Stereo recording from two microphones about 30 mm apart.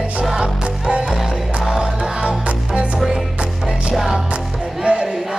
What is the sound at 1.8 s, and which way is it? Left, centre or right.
Music, right.